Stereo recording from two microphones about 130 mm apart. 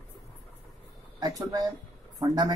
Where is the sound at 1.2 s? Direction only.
30° right (ahead or behind).